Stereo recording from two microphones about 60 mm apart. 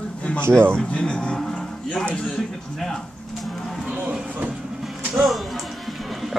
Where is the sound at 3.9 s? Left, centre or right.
Right.